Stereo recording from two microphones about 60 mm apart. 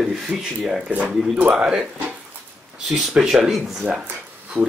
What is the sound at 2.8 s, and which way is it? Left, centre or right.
Speech, centre.